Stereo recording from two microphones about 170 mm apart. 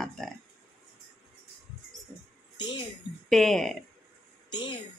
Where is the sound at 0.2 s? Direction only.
5° left (ahead or behind).